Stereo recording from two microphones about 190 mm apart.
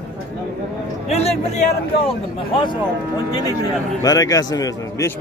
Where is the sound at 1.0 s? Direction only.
35° left (ahead or behind).